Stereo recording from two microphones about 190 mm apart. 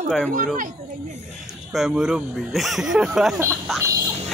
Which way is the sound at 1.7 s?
Centre (ahead or behind).